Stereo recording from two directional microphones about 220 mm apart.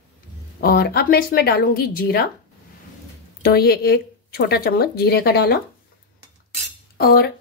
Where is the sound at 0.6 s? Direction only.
40° left (ahead or behind).